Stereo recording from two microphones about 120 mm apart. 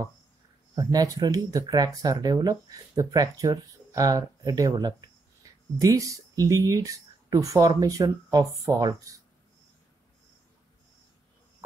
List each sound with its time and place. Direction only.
0.7 s speech: 30° right (ahead or behind)